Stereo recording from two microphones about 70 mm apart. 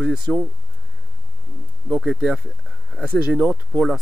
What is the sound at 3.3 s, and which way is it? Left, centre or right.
Speech, centre.